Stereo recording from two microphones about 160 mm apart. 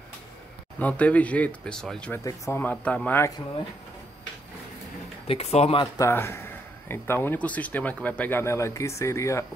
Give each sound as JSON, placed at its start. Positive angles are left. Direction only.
{"t": 0.7, "sound": "speech", "side_deg": 10}
{"t": 2.2, "sound": "speech", "side_deg": 15}
{"t": 5.2, "sound": "speech", "side_deg": 40}
{"t": 5.9, "sound": "speech", "side_deg": 15}